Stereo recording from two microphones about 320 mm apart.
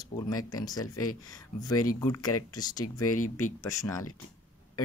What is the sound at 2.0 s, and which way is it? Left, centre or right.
Speech, centre.